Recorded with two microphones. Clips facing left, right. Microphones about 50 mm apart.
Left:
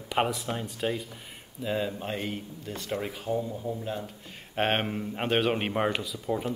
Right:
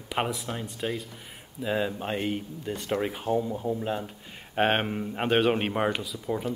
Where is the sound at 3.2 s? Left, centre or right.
Right.